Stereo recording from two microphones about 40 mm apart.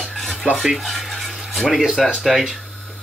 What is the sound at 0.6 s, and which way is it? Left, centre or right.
Stir, centre.